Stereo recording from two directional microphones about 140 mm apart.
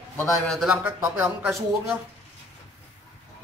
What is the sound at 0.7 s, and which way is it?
Speech, 15° right (ahead or behind).